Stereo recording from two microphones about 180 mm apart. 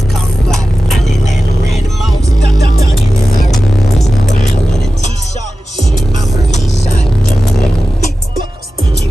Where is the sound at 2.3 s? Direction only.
45° left (ahead or behind).